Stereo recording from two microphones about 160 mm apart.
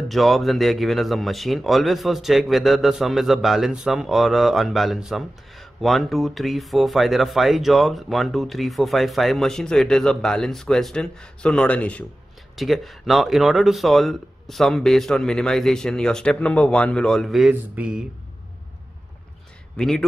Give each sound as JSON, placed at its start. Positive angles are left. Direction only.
{"t": 0.1, "sound": "speech", "side_deg": 0}
{"t": 19.8, "sound": "speech", "side_deg": 5}